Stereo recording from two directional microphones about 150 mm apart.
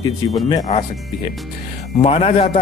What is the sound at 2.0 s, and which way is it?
Speech, 40° left (ahead or behind).